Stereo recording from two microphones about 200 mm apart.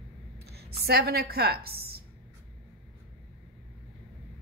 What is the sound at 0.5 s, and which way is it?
A woman's voice, 50° right (ahead or behind).